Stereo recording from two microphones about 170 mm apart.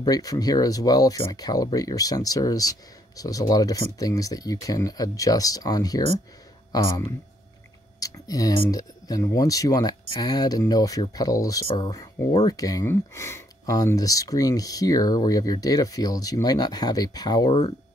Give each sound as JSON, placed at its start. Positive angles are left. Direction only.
{"t": 0.0, "sound": "speech", "side_deg": 20}